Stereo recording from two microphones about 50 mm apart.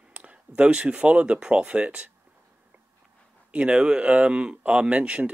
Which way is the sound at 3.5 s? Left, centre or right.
Right.